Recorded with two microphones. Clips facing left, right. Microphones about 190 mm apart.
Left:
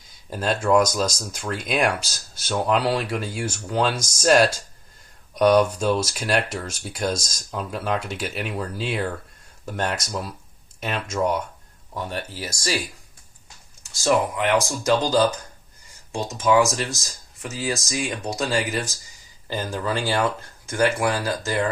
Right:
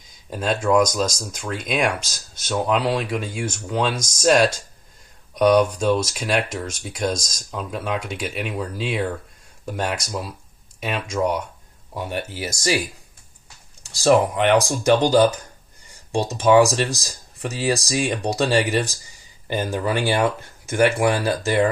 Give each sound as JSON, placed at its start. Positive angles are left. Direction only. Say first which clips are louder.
{"t": 0.3, "sound": "speech", "louder": "even", "side_deg": 0}
{"t": 11.9, "sound": "speech", "louder": "right 2 dB", "side_deg": -15}
{"t": 14.0, "sound": "speech", "louder": "right 4 dB", "side_deg": -25}
{"t": 16.3, "sound": "speech", "louder": "right 4 dB", "side_deg": -30}